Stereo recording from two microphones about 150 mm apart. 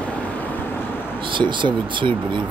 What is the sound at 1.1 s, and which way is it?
Speech, 35° right (ahead or behind).